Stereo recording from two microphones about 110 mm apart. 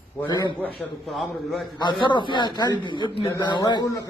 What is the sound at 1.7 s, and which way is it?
A man's voice, 45° left (ahead or behind).